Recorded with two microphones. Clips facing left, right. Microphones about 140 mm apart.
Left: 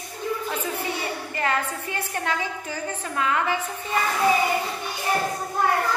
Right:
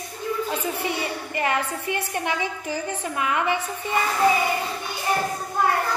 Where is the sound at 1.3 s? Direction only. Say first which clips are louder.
Right 1 dB; 15° right (ahead or behind).